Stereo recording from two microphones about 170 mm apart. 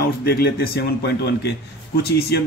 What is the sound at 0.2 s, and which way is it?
A man's voice, 70° left (ahead or behind).